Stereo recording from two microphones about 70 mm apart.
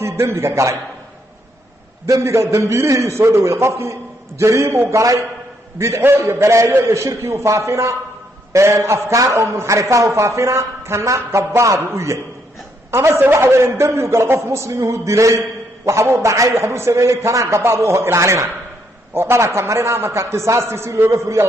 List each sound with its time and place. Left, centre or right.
0.0 s a man's voice: right
2.0 s a man's voice: right